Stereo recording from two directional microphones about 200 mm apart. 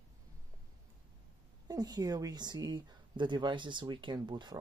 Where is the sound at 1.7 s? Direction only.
20° right (ahead or behind).